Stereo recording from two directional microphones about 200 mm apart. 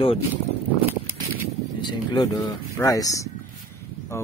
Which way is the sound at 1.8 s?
20° left (ahead or behind).